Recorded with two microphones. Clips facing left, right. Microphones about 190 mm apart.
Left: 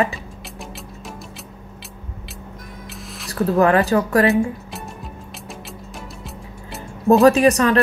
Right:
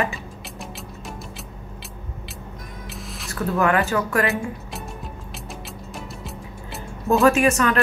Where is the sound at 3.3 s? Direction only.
35° left (ahead or behind).